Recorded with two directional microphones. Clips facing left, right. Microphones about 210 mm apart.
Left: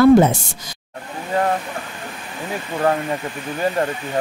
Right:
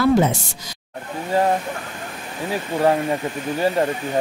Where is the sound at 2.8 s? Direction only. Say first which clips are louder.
Right 1 dB; 15° right (ahead or behind).